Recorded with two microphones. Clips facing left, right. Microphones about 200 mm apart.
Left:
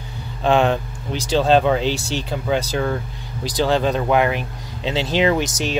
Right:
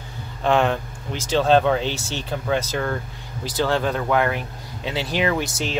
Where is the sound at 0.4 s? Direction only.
20° left (ahead or behind).